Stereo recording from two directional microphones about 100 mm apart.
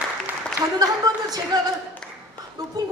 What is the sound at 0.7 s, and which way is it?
Speech, 40° right (ahead or behind).